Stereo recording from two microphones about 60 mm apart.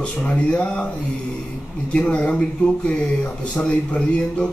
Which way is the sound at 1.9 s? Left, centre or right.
Centre.